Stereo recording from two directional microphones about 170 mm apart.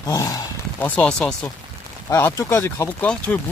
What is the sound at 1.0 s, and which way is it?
Speech, 5° left (ahead or behind).